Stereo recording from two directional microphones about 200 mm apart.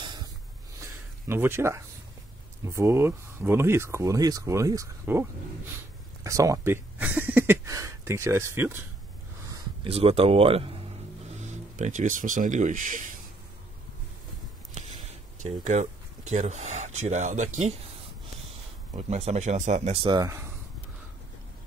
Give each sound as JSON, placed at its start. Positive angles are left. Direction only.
{"t": 0.0, "sound": "a sound", "side_deg": -20}
{"t": 1.2, "sound": "speech", "side_deg": -10}
{"t": 6.2, "sound": "speech", "side_deg": -15}
{"t": 7.2, "sound": "a sound", "side_deg": -10}
{"t": 9.8, "sound": "speech", "side_deg": -30}
{"t": 11.7, "sound": "speech", "side_deg": -40}
{"t": 15.4, "sound": "speech", "side_deg": -35}
{"t": 18.9, "sound": "speech", "side_deg": -35}